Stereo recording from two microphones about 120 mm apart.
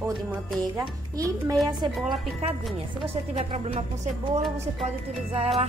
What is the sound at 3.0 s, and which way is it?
Speech, 60° right (ahead or behind).